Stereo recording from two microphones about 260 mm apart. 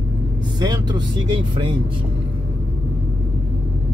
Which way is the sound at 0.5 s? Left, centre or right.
Centre.